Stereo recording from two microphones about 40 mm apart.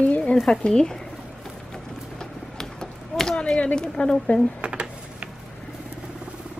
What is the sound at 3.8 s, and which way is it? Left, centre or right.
Speech, centre.